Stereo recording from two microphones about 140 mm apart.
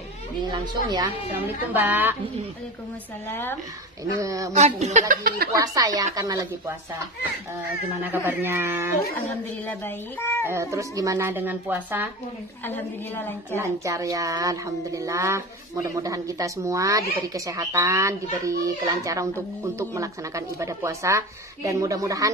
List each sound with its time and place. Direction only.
0.4 s speech: 30° right (ahead or behind)
1.7 s speech: 15° right (ahead or behind)
3.3 s a woman's voice: 15° left (ahead or behind)
4.2 s speech: 25° right (ahead or behind)
4.5 s speech: 55° right (ahead or behind); by 5.5 s 80° right
5.6 s speech: 25° right (ahead or behind)
8.1 s speech: 15° right (ahead or behind)
9.7 s a woman's voice: 15° left (ahead or behind)
10.4 s speech: 20° right (ahead or behind)
12.6 s a woman's voice: 15° left (ahead or behind)
13.6 s speech: 25° right (ahead or behind)